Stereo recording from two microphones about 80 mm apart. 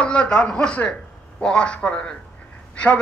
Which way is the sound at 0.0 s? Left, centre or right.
Centre.